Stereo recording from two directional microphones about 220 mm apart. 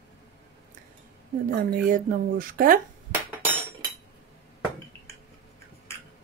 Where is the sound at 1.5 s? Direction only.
40° right (ahead or behind).